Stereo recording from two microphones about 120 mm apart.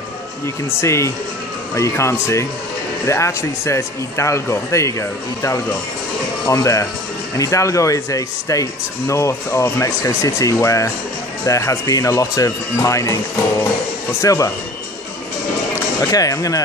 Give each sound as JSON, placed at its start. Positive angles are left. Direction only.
{"t": 0.7, "sound": "speech", "side_deg": 25}
{"t": 6.4, "sound": "speech", "side_deg": 25}
{"t": 15.7, "sound": "speech", "side_deg": 30}